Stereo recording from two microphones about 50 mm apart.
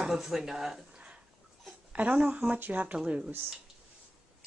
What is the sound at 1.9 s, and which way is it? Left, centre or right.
A woman's voice, right.